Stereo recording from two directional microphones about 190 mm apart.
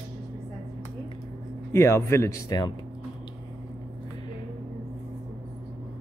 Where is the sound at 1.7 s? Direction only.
15° left (ahead or behind).